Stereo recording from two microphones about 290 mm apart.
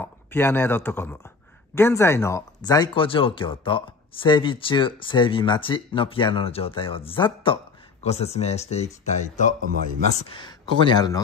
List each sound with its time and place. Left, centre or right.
0.0 s speech: centre; by 9.6 s left
9.6 s speech: right
10.1 s speech: centre